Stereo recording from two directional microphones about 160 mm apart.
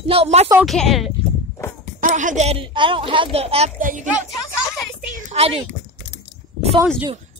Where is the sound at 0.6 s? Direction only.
Centre (ahead or behind).